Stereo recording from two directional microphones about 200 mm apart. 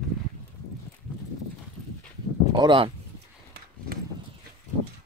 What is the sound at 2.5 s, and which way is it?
Speech, 25° right (ahead or behind).